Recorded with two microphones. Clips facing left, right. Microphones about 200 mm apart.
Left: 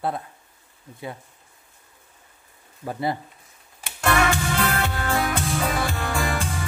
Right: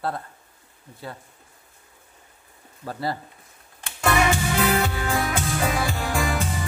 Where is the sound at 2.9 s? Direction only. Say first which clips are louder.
Left 2 dB; 20° left (ahead or behind).